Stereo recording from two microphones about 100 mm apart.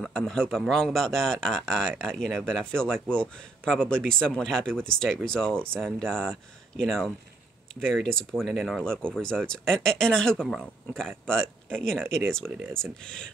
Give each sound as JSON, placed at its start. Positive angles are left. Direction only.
{"t": 0.0, "sound": "speech", "side_deg": 5}
{"t": 12.4, "sound": "speech", "side_deg": -25}
{"t": 13.0, "sound": "speech", "side_deg": 10}